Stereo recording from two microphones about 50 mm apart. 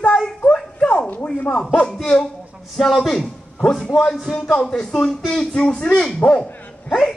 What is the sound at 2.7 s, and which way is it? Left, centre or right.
A man's voice, centre.